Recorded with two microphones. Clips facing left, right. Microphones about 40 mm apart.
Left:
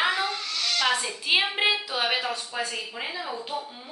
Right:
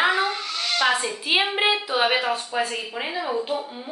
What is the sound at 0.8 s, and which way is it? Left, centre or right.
A woman's voice, centre.